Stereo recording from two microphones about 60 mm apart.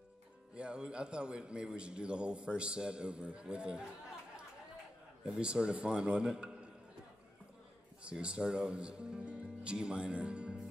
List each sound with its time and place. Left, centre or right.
0.6 s a man's voice: centre
5.2 s a man's voice: centre
8.1 s a man's voice: centre